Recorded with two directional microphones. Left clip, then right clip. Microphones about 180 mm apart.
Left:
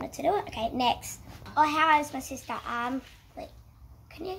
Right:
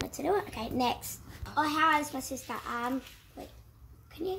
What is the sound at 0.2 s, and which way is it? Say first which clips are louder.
A woman's voice: left 4 dB; centre (ahead or behind).